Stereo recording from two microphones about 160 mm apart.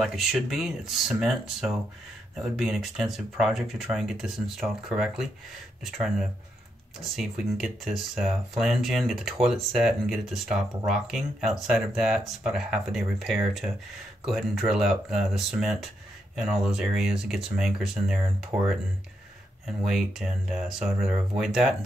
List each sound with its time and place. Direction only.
0.0 s speech: centre (ahead or behind)
18.5 s speech: 20° right (ahead or behind)
19.6 s speech: 5° right (ahead or behind)